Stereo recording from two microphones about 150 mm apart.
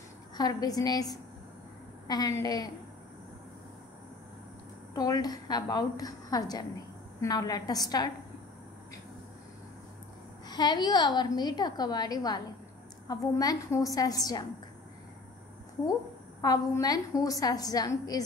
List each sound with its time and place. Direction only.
0.4 s a woman's voice: 25° left (ahead or behind)
4.9 s a woman's voice: 25° left (ahead or behind)
10.5 s a woman's voice: 30° left (ahead or behind)
15.9 s a woman's voice: 25° left (ahead or behind)